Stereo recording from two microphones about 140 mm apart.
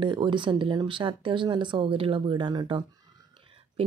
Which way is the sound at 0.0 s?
35° right (ahead or behind).